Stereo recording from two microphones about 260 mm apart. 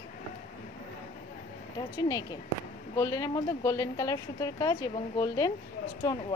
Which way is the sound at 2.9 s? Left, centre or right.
Centre.